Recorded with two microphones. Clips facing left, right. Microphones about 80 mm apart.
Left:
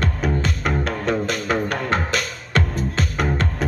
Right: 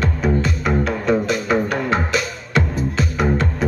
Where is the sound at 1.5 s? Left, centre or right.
Centre.